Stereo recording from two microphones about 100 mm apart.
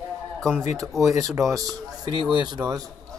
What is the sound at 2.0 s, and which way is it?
Speech, 45° right (ahead or behind).